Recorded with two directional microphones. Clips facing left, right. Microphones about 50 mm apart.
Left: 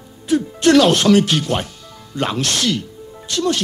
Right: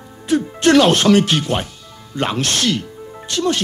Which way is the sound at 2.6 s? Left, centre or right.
Right.